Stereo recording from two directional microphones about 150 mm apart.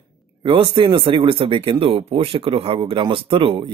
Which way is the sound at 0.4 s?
35° right (ahead or behind).